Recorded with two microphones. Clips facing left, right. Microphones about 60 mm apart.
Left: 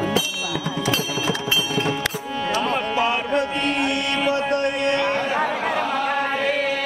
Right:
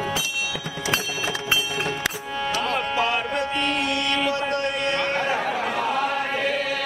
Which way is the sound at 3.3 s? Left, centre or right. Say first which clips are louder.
Left 3 dB; left.